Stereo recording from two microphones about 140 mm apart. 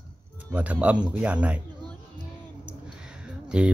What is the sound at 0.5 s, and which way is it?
Speech, 10° right (ahead or behind).